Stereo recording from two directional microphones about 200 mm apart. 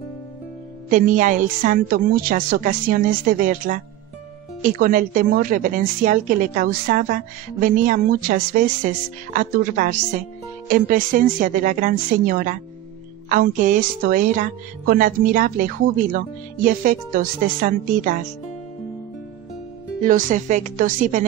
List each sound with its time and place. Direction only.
0.8 s speech: 45° right (ahead or behind)
20.0 s speech: 40° right (ahead or behind)